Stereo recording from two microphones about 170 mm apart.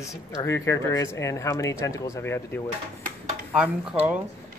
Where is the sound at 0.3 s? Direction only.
20° left (ahead or behind).